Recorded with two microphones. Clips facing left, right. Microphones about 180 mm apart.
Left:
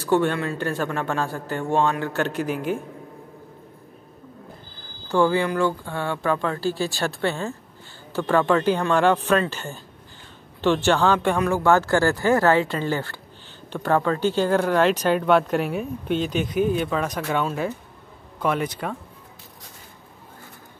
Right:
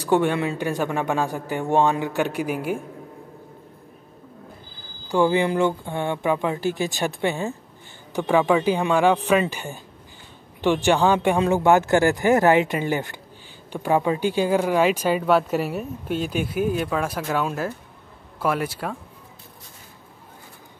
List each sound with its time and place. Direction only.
0.0 s speech: 15° right (ahead or behind)
5.0 s a man's voice: 15° right (ahead or behind)